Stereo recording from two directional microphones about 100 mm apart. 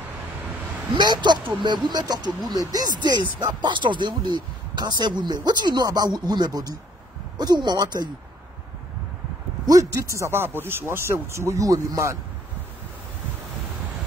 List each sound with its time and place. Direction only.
0.9 s speech: 50° right (ahead or behind)
9.7 s speech: 35° right (ahead or behind)